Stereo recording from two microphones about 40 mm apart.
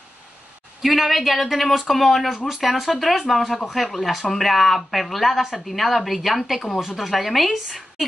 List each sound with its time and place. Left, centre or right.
0.8 s speech: centre
2.3 s speech: centre